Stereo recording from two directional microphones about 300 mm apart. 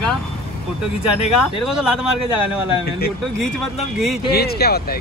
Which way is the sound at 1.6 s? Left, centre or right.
Centre.